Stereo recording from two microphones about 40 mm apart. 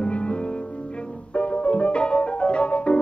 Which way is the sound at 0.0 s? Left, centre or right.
Left.